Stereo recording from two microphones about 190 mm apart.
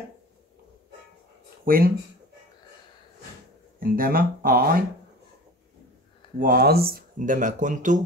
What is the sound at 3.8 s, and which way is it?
Speech, 50° right (ahead or behind).